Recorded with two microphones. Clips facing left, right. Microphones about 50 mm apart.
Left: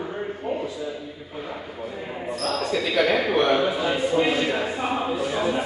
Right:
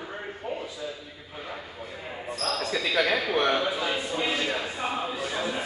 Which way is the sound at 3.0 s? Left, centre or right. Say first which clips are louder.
Left 5 dB; centre.